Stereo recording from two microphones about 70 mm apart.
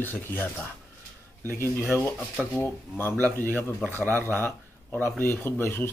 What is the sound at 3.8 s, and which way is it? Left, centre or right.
Speech, right.